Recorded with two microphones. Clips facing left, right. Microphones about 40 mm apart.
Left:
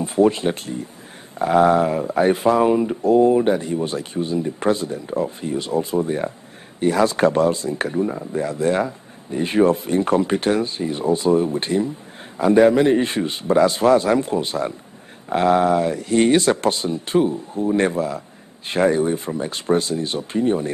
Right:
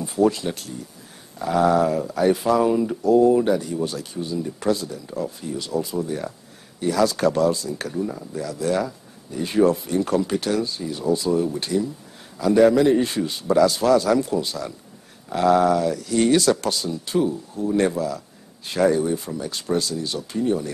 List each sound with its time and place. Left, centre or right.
0.0 s speech: left